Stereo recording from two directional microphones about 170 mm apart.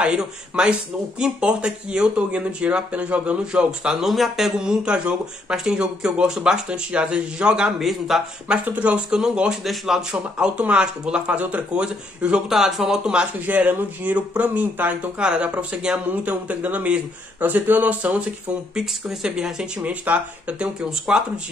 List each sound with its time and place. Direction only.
0.0 s speech: 5° right (ahead or behind)